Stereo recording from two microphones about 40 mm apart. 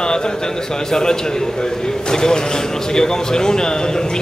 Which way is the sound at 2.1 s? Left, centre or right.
Centre.